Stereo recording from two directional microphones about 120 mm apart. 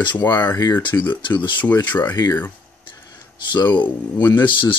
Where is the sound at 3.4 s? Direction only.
40° left (ahead or behind).